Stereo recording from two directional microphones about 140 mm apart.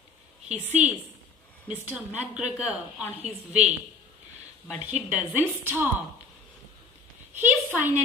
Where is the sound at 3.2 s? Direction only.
50° right (ahead or behind).